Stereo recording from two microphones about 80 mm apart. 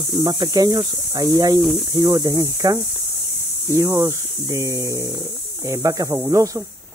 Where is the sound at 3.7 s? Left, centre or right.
Right.